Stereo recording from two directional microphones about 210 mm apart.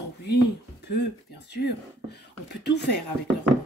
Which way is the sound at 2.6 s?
55° left (ahead or behind).